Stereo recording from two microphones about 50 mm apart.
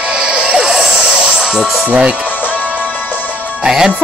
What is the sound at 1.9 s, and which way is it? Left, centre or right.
Speech, right.